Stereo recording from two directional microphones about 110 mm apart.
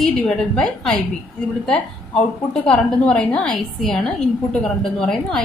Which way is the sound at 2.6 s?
5° left (ahead or behind).